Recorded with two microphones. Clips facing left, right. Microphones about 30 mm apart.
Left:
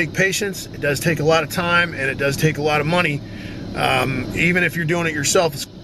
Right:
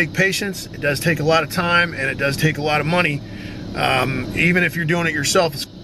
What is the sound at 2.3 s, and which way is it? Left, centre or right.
Speech, centre.